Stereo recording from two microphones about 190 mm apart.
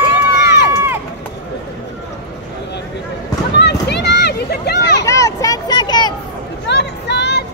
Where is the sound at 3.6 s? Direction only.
60° left (ahead or behind).